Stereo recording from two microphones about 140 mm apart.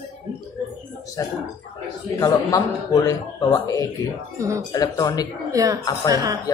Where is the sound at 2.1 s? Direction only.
25° left (ahead or behind).